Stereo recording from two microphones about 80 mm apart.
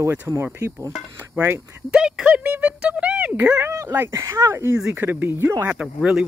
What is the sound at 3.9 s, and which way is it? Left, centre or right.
Speech, right.